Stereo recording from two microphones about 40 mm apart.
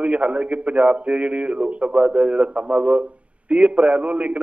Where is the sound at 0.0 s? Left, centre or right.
Right.